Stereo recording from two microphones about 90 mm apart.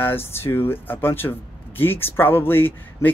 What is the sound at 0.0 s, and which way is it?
Speech, 25° left (ahead or behind).